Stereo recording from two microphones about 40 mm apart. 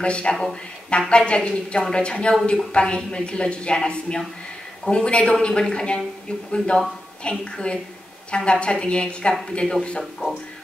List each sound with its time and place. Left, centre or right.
0.0 s a woman's voice: left